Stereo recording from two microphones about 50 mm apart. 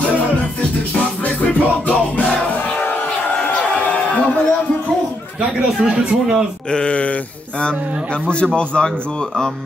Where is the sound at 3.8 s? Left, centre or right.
Left.